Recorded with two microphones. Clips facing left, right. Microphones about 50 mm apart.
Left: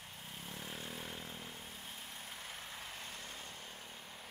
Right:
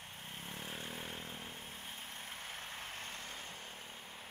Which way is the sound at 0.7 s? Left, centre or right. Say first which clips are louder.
Right 1 dB; right.